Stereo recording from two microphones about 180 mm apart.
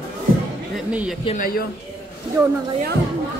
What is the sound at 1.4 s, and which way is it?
Speech, 55° left (ahead or behind).